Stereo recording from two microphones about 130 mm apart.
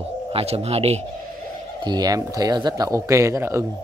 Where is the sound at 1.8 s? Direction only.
30° right (ahead or behind).